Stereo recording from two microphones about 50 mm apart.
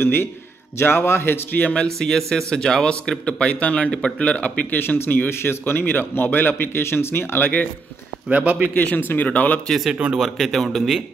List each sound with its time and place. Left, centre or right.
0.0 s a man's voice: left
2.0 s speech: centre; by 4.7 s left
4.7 s speech: left
8.3 s a man's voice: right
8.7 s speech: left
10.1 s speech: centre